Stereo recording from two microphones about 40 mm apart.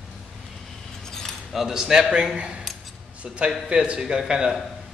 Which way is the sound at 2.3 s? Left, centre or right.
Right.